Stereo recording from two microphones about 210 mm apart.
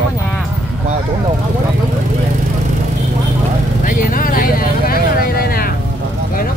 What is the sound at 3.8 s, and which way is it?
Vehicle, 40° left (ahead or behind).